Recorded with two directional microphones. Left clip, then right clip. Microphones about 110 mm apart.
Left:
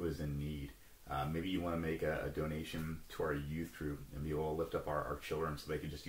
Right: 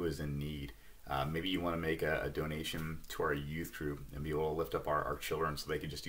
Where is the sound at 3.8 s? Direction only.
30° right (ahead or behind).